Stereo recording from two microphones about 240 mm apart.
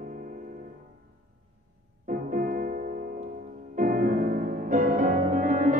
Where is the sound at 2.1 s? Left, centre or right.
Right.